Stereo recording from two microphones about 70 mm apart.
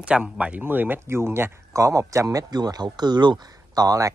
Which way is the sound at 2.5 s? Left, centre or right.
Right.